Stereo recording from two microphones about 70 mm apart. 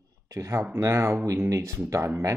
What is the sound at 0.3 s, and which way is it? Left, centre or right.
Speech, right.